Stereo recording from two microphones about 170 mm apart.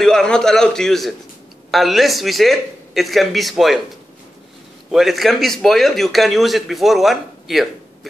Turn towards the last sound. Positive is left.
turn(degrees=0)  # may be behind; listen again after turning